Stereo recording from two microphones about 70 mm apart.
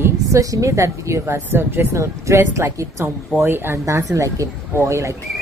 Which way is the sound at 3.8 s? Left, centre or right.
Right.